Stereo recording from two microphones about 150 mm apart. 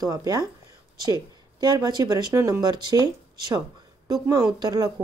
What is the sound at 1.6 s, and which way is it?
A woman's voice, 25° right (ahead or behind).